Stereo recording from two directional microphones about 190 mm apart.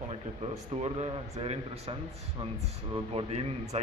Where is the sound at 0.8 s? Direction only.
35° right (ahead or behind).